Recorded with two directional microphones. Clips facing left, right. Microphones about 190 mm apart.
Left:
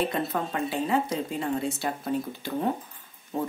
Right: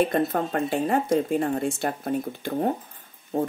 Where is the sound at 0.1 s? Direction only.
50° right (ahead or behind).